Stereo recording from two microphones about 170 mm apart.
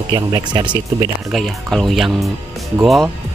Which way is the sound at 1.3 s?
Centre (ahead or behind).